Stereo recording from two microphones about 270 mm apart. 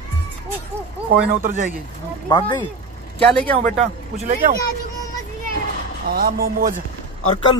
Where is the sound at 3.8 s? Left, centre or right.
Right.